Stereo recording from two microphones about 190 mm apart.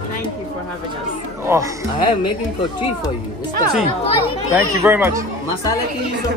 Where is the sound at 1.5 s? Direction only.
15° right (ahead or behind).